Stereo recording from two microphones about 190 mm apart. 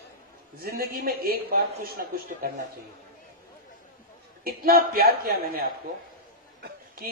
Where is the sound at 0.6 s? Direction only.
50° right (ahead or behind).